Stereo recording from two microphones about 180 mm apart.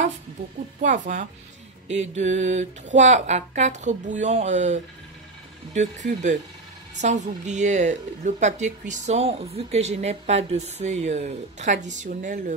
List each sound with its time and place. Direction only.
0.7 s speech: 45° right (ahead or behind)